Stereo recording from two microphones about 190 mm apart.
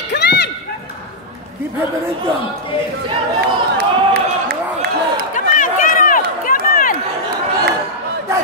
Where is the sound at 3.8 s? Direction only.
55° right (ahead or behind).